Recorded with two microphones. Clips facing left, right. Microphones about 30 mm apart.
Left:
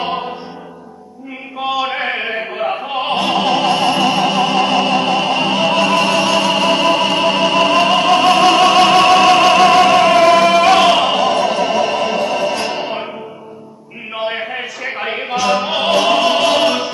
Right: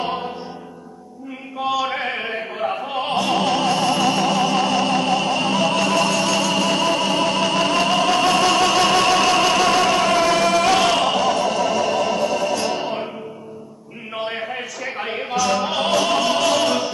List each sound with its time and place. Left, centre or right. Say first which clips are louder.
0.0 s music: left 4 dB; left
1.6 s opera: left 3 dB; left
14.1 s a sound: left 5 dB; left